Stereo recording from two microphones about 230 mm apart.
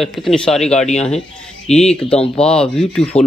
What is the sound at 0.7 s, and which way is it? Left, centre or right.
Speech, left.